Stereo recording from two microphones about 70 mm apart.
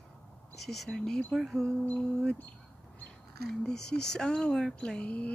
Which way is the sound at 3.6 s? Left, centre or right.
Centre.